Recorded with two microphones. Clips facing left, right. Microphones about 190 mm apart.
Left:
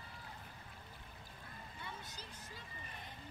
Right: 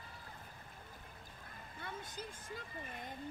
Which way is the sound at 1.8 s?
50° right (ahead or behind).